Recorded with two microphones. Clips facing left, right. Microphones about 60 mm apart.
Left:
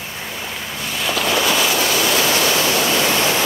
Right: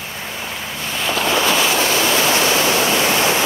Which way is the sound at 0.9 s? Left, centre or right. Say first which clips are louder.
Right 1 dB; right.